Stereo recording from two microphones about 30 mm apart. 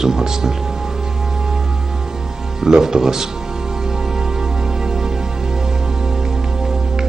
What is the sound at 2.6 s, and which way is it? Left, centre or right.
Speech, centre.